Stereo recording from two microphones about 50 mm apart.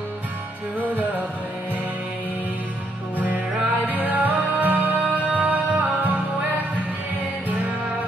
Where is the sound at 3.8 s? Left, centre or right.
Right.